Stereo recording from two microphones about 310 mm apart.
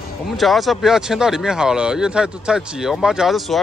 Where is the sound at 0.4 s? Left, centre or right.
Centre.